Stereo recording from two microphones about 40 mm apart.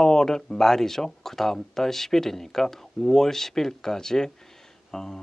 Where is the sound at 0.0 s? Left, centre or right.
Centre.